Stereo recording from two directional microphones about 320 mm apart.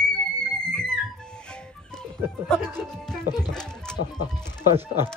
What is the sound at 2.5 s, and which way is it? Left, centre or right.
Speech, centre.